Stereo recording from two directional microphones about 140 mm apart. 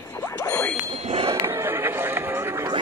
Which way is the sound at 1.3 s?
20° right (ahead or behind).